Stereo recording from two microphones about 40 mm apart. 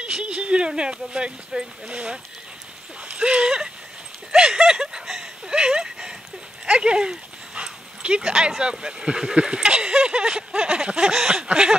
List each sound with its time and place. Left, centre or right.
0.1 s speech: right
3.1 s speech: right
3.4 s speech: centre
4.3 s a sound: centre
6.6 s speech: right